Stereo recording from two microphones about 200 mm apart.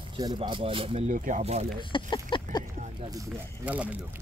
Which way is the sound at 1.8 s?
25° left (ahead or behind).